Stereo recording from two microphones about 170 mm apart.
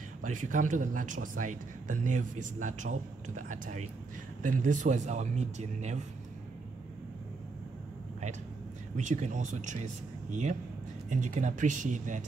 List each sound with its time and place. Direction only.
0.2 s speech: 50° right (ahead or behind)
8.9 s speech: 45° right (ahead or behind)
11.1 s speech: 45° right (ahead or behind)